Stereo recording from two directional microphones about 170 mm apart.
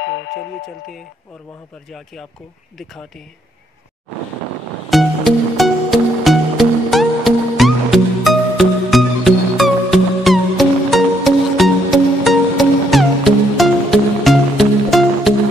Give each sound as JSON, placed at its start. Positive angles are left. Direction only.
{"t": 0.0, "sound": "music", "side_deg": 85}
{"t": 4.8, "sound": "music", "side_deg": 0}